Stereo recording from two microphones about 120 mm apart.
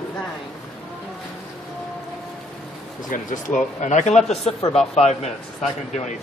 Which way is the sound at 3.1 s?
90° left.